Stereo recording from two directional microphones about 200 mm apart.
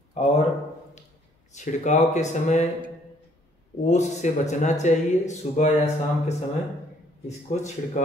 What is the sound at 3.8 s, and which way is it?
Speech, 35° left (ahead or behind).